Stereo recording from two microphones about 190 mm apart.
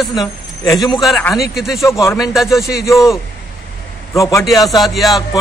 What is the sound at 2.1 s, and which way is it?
Speech, centre (ahead or behind).